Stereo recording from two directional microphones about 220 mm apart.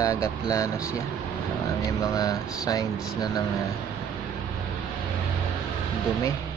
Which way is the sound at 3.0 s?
Centre (ahead or behind).